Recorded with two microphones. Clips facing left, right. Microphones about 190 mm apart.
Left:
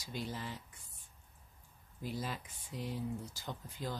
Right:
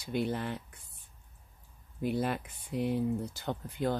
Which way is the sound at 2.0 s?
60° right (ahead or behind).